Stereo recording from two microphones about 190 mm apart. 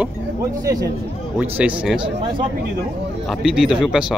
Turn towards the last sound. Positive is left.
turn(degrees=-5)  # may be behind; listen again after turning